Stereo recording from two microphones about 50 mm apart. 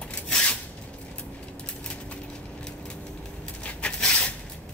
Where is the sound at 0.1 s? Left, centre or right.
Left.